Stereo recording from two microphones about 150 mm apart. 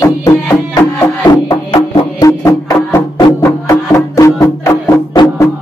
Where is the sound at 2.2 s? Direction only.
20° left (ahead or behind).